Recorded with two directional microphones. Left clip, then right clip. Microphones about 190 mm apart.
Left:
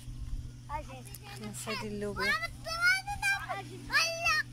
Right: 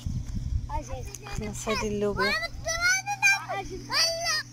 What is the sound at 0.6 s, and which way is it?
Speech, 25° right (ahead or behind).